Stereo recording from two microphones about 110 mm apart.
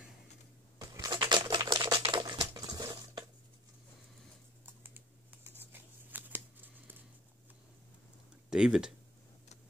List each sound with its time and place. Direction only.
0.7 s a sound: 30° right (ahead or behind)
4.8 s typing: 20° right (ahead or behind)
5.6 s shuffling cards: 15° right (ahead or behind)
8.5 s speech: 5° right (ahead or behind)